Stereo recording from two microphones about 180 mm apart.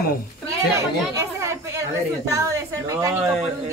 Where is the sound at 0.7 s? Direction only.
15° right (ahead or behind).